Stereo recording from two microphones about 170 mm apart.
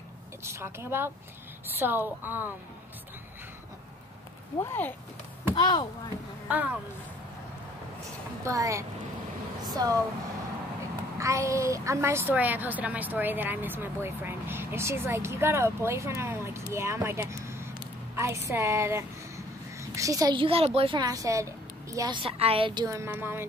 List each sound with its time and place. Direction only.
0.4 s a woman's voice: 15° right (ahead or behind)
4.6 s speech: 15° left (ahead or behind)
5.5 s speech: 25° left (ahead or behind)
6.5 s a woman's voice: 10° right (ahead or behind)
8.5 s a woman's voice: 20° right (ahead or behind)
11.1 s a woman's voice: 20° right (ahead or behind)